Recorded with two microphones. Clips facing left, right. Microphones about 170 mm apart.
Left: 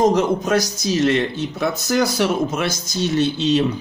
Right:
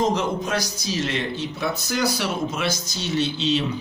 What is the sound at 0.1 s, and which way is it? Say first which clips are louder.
Speech: left 6 dB; 45° left (ahead or behind).